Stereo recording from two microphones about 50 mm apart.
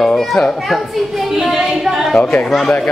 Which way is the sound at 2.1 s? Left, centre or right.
Centre.